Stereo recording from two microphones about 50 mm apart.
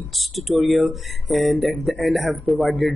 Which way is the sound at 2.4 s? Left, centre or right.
Right.